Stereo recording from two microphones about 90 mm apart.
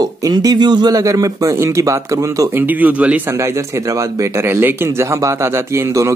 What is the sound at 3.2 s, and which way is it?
Speech, 30° right (ahead or behind).